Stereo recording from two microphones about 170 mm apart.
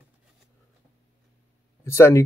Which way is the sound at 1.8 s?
15° left (ahead or behind).